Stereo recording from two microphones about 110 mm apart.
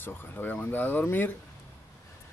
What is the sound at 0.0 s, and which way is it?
Speech, 20° left (ahead or behind).